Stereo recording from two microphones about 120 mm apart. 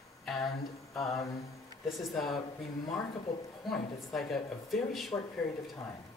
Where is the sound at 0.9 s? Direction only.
25° left (ahead or behind).